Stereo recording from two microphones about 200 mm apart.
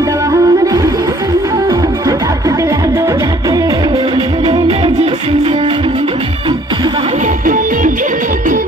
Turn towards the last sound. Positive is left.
turn(degrees=-40)  # may be behind; listen again after turning